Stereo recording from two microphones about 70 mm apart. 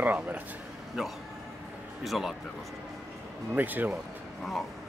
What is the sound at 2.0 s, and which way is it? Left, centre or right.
Speech, centre.